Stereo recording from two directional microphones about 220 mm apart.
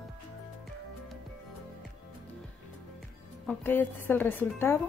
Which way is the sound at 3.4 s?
5° left (ahead or behind).